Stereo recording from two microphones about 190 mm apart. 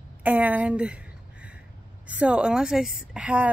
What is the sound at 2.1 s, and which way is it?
A woman's voice, 5° right (ahead or behind).